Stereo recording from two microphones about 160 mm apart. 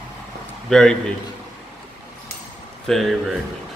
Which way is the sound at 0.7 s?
5° left (ahead or behind).